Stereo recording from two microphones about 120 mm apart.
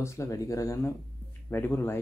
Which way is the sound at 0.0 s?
25° left (ahead or behind).